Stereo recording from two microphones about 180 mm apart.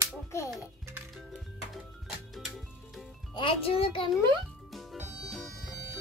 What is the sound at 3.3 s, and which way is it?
Speech, 30° left (ahead or behind).